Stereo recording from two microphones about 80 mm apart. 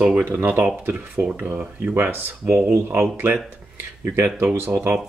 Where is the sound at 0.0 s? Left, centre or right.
Right.